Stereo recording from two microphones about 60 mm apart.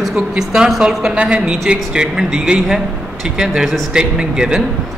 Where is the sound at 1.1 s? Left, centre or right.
Centre.